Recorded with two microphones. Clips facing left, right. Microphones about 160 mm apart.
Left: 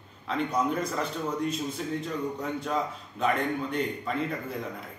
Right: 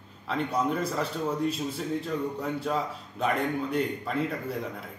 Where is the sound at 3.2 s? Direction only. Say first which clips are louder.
Even; centre (ahead or behind).